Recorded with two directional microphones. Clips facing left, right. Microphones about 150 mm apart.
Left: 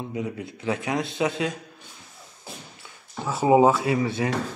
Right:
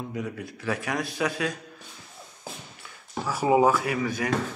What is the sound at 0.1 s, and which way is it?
Speech, 20° left (ahead or behind).